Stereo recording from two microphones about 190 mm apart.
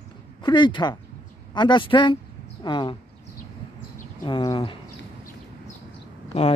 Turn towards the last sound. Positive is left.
turn(degrees=30)  # may be behind; listen again after turning